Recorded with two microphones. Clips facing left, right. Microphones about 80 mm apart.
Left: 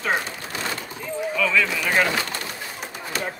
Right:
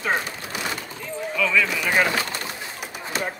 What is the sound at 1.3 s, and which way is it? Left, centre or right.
Speech, centre.